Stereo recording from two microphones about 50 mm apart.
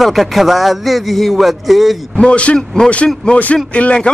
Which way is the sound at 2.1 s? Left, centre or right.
Left.